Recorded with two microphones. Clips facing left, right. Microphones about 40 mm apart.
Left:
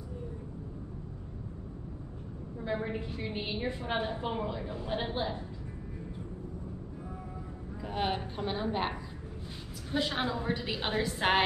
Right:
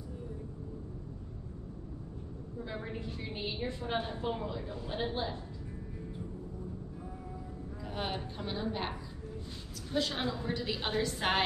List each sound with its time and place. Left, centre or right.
2.6 s a woman's voice: left
7.8 s a woman's voice: centre